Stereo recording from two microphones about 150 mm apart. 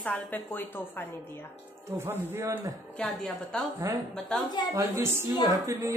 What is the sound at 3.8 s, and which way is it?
Speech, 20° right (ahead or behind).